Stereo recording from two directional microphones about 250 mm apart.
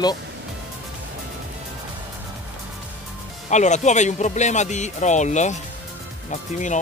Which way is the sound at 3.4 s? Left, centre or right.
Left.